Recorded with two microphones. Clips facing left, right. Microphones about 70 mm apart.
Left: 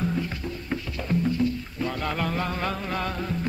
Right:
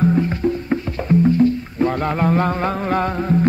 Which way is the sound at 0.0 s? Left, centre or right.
Right.